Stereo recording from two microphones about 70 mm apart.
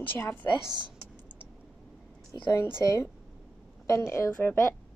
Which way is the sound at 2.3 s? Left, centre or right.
Left.